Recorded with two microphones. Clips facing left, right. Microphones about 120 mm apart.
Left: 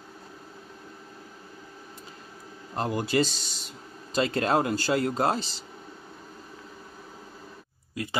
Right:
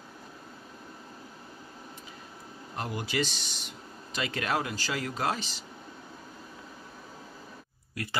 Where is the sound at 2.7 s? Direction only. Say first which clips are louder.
Left 7 dB; 35° left (ahead or behind).